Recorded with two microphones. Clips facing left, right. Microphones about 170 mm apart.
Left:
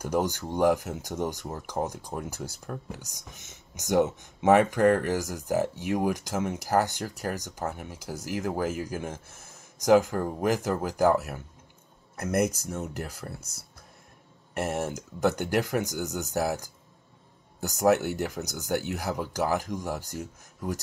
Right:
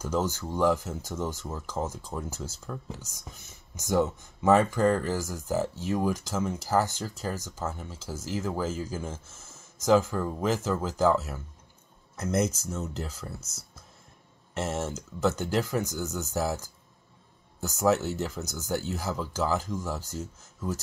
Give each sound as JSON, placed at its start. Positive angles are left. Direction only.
{"t": 0.0, "sound": "speech", "side_deg": 15}
{"t": 14.5, "sound": "speech", "side_deg": 15}